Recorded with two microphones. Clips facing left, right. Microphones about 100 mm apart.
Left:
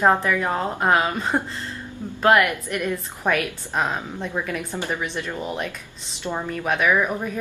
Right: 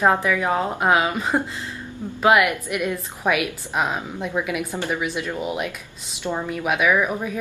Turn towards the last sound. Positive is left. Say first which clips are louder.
# right 1 dB
turn(degrees=-5)  # may be behind; listen again after turning